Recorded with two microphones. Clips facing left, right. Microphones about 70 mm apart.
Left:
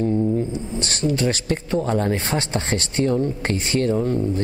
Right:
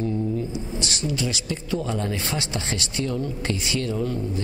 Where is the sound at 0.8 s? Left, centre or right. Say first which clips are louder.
Left 7 dB; left.